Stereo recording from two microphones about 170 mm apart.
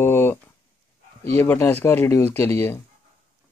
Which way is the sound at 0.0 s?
15° left (ahead or behind).